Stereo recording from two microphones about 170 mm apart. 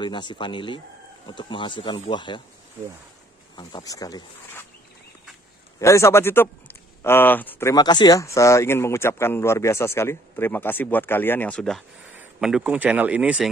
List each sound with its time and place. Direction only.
0.0 s speech: 25° left (ahead or behind)
3.5 s speech: 25° left (ahead or behind)
5.8 s speech: 15° left (ahead or behind)
7.7 s speech: 25° left (ahead or behind); by 13.5 s 5° right (ahead or behind)